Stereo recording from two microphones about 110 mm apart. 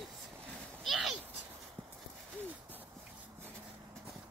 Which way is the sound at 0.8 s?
Centre (ahead or behind).